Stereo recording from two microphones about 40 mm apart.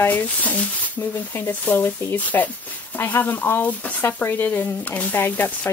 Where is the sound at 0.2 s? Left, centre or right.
Left.